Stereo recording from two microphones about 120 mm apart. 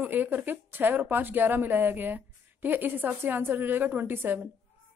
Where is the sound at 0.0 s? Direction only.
15° right (ahead or behind).